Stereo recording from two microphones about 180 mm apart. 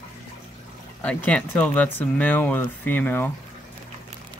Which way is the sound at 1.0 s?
10° left (ahead or behind).